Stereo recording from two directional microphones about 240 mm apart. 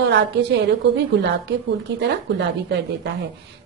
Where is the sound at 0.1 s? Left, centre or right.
Right.